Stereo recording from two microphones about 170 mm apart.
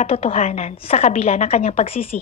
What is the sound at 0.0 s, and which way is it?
A woman's voice, 35° left (ahead or behind).